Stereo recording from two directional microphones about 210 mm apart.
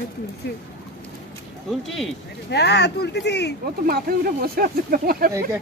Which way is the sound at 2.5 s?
55° left (ahead or behind).